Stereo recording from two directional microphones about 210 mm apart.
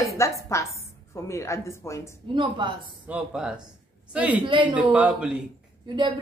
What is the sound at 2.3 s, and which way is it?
Speech, 20° right (ahead or behind).